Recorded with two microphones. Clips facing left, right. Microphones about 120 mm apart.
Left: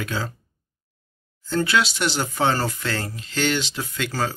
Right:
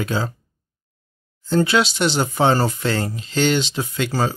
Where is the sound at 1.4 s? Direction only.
25° right (ahead or behind).